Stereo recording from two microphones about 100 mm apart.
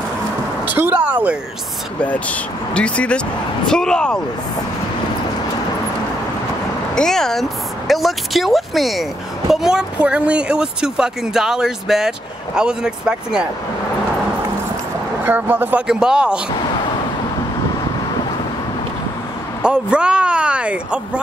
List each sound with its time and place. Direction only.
0.7 s speech: 15° right (ahead or behind)
2.0 s speech: 15° left (ahead or behind)
7.0 s speech: 5° left (ahead or behind)
15.2 s speech: 20° right (ahead or behind)
15.9 s speech: 5° right (ahead or behind)
19.6 s speech: 10° right (ahead or behind)